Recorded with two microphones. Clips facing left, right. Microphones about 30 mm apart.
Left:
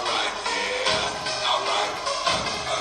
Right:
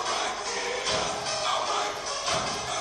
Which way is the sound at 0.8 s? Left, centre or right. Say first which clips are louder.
Left 4 dB; left.